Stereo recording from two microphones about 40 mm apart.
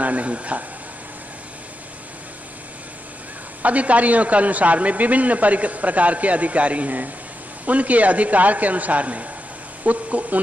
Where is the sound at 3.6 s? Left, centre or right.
Right.